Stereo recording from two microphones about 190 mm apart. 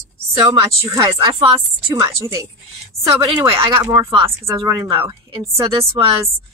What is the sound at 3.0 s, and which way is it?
Speech, 25° right (ahead or behind).